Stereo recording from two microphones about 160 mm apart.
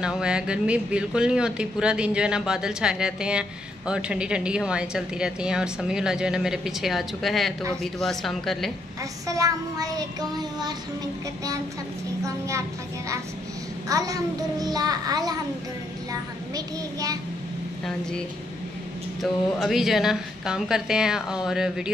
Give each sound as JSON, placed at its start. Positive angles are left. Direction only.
{"t": 0.0, "sound": "speech", "side_deg": -5}
{"t": 9.3, "sound": "a child's voice", "side_deg": -20}
{"t": 12.3, "sound": "a child's voice", "side_deg": -20}
{"t": 13.8, "sound": "a child's voice", "side_deg": -20}
{"t": 19.2, "sound": "speech", "side_deg": 0}